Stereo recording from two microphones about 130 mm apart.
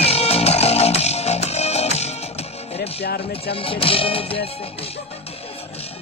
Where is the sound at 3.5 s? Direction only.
45° left (ahead or behind).